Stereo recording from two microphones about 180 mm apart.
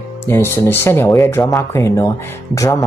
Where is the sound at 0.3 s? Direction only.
10° left (ahead or behind).